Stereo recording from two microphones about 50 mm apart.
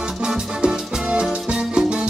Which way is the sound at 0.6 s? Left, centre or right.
Centre.